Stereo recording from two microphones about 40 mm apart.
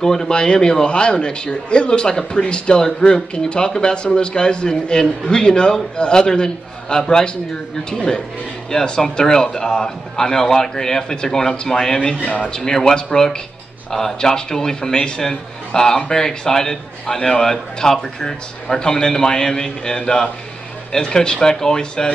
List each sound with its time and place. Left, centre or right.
0.0 s a man's voice: centre
12.3 s speech: left
12.5 s a man's voice: centre